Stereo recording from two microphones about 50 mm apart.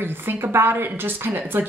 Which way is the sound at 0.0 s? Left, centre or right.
Right.